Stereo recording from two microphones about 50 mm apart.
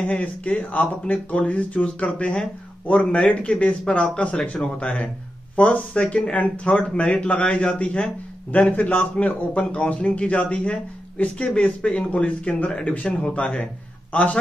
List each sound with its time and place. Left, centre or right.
0.0 s speech: left
8.5 s speech: left